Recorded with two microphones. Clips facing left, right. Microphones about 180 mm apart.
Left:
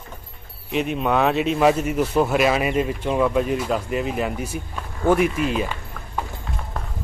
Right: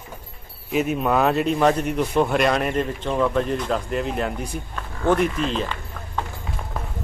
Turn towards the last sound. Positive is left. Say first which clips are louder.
# left 2 dB
turn(degrees=10)  # may be behind; listen again after turning